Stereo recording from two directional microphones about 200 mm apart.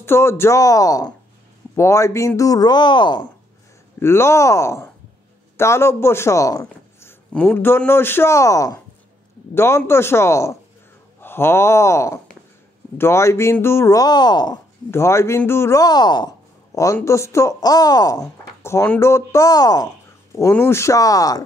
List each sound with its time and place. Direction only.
0.0 s speech: 10° left (ahead or behind)
4.0 s speech: 10° left (ahead or behind)
11.1 s a sound: 10° left (ahead or behind)
12.9 s speech: 15° left (ahead or behind)